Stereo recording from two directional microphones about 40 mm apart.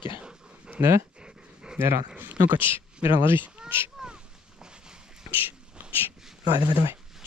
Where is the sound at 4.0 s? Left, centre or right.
Centre.